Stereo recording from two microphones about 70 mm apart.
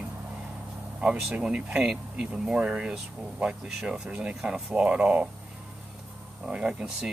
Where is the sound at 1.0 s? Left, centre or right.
Centre.